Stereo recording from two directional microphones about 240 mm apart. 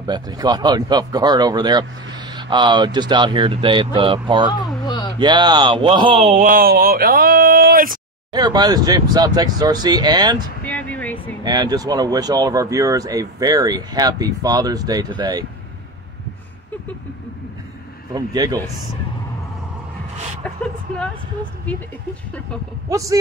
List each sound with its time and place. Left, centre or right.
0.0 s speech: centre
4.8 s a sound: centre
5.2 s speech: centre; by 8.0 s right
8.3 s speech: centre
10.6 s a sound: centre
11.4 s speech: centre
18.1 s speech: centre
22.8 s speech: centre